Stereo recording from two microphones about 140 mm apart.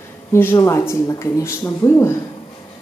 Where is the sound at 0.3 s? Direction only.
20° left (ahead or behind).